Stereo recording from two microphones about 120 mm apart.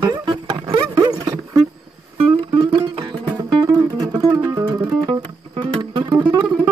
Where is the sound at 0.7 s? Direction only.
35° right (ahead or behind).